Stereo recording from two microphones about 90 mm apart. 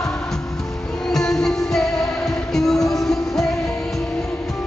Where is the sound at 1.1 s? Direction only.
5° left (ahead or behind).